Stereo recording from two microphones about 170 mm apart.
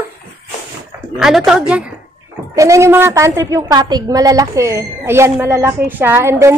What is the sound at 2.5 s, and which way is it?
A woman's voice, 15° right (ahead or behind).